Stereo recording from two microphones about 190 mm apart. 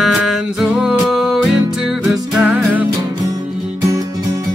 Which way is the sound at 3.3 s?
20° right (ahead or behind).